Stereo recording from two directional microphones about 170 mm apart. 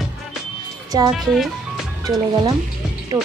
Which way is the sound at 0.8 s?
25° right (ahead or behind).